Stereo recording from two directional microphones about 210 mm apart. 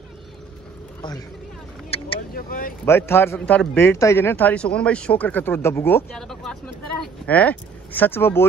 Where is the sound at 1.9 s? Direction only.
25° left (ahead or behind).